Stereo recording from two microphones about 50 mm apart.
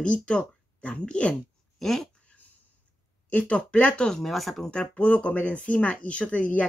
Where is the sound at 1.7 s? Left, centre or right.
Centre.